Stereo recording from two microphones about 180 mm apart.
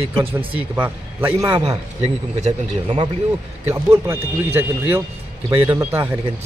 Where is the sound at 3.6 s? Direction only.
15° right (ahead or behind).